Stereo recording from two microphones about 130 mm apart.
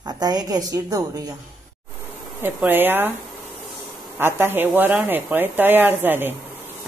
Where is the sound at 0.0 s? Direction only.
30° right (ahead or behind).